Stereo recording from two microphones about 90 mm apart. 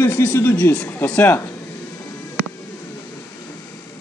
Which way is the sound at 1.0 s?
15° left (ahead or behind).